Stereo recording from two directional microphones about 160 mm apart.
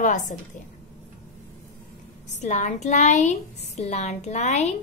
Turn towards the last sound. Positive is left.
turn(degrees=45)  # may be behind; listen again after turning